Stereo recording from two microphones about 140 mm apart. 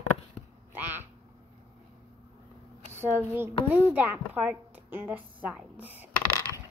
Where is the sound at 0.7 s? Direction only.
15° right (ahead or behind).